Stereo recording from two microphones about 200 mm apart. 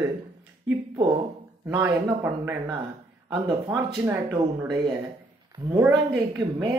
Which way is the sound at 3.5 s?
20° right (ahead or behind).